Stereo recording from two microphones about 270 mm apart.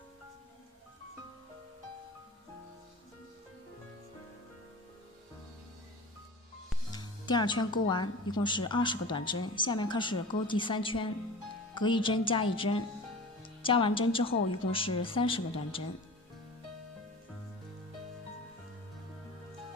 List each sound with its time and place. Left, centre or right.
6.9 s speech: centre